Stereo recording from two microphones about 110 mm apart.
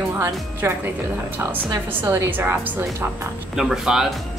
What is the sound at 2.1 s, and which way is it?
Speech, 20° right (ahead or behind).